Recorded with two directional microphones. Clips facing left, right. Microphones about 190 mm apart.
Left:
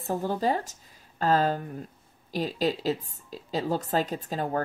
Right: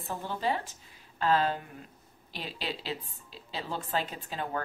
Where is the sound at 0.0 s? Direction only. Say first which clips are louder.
Left 6 dB; 40° left (ahead or behind).